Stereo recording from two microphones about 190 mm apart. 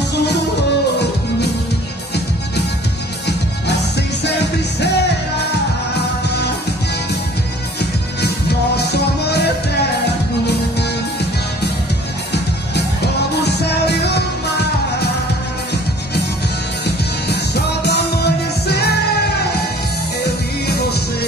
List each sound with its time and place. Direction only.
0.1 s music: 60° left (ahead or behind)
3.3 s music: 60° left (ahead or behind)
7.8 s music: 60° left (ahead or behind)
12.7 s music: 60° left (ahead or behind)
16.8 s music: 60° left (ahead or behind)
20.2 s music: 60° left (ahead or behind)